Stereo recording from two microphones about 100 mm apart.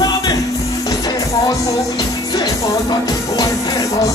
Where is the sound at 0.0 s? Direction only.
40° left (ahead or behind).